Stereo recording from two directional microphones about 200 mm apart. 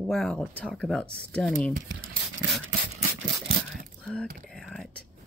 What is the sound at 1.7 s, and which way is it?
Speech, 45° right (ahead or behind).